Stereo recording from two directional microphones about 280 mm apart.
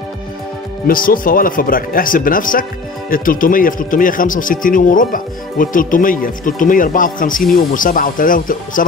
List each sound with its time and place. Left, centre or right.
0.8 s speech: left